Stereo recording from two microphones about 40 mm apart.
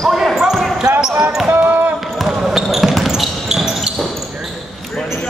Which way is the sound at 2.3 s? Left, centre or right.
Centre.